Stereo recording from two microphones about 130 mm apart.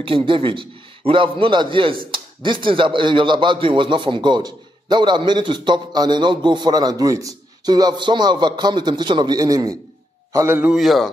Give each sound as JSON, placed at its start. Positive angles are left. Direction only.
{"t": 0.0, "sound": "speech", "side_deg": -45}
{"t": 10.3, "sound": "a man's voice", "side_deg": -15}
{"t": 10.7, "sound": "a man's voice", "side_deg": 0}